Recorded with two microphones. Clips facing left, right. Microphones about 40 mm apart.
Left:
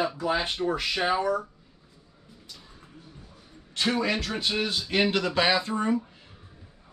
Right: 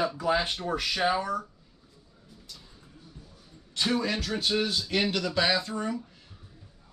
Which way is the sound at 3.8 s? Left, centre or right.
Left.